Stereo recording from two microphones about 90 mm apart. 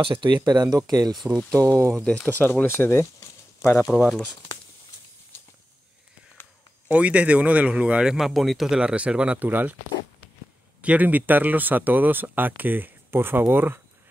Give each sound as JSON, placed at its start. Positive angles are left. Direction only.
{"t": 0.0, "sound": "speech", "side_deg": -65}
{"t": 2.0, "sound": "speech", "side_deg": 15}
{"t": 3.8, "sound": "speech", "side_deg": -10}
{"t": 6.9, "sound": "speech", "side_deg": -15}
{"t": 10.8, "sound": "speech", "side_deg": -15}